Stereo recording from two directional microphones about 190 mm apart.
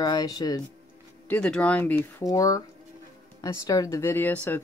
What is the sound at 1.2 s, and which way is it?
Speech, 5° left (ahead or behind).